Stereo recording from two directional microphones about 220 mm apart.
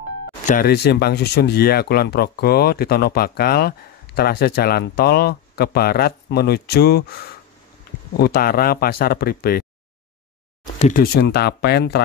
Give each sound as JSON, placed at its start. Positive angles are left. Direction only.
{"t": 0.5, "sound": "speech", "side_deg": 45}
{"t": 8.2, "sound": "speech", "side_deg": 40}
{"t": 10.8, "sound": "speech", "side_deg": 40}